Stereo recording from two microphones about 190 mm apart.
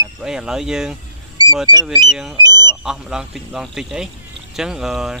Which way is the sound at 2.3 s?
20° right (ahead or behind).